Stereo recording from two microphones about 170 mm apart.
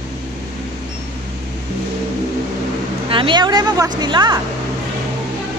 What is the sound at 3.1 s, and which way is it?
Speech, 30° right (ahead or behind).